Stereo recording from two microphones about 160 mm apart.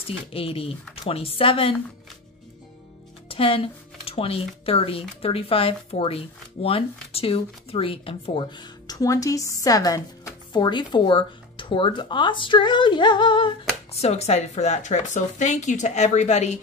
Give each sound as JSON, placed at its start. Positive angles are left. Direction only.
{"t": 0.0, "sound": "speech", "side_deg": 35}
{"t": 3.3, "sound": "speech", "side_deg": 35}
{"t": 14.0, "sound": "speech", "side_deg": 40}